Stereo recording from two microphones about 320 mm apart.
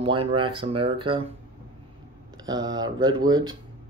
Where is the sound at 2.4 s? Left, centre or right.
Centre.